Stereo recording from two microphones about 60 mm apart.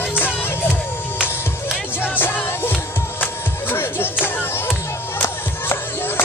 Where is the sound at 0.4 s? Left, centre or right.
Left.